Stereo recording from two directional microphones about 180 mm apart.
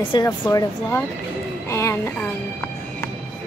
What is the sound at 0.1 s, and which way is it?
Speech, 20° left (ahead or behind).